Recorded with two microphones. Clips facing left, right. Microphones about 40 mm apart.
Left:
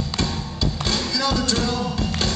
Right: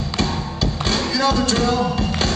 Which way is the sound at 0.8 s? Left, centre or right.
Centre.